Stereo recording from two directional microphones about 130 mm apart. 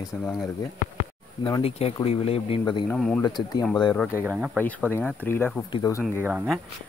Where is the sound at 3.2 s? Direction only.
35° left (ahead or behind).